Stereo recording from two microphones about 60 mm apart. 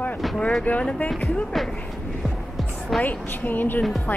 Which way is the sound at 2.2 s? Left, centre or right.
Centre.